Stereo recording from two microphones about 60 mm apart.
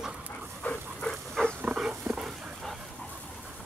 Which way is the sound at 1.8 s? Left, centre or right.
Centre.